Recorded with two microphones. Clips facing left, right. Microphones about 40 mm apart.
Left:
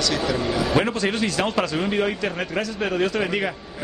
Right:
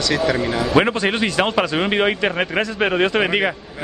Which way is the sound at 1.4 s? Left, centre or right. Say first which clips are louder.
Right 4 dB; right.